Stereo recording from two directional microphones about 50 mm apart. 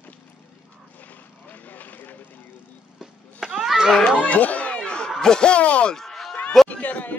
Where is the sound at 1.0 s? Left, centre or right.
Left.